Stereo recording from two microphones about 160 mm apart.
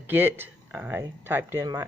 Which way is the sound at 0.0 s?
10° right (ahead or behind).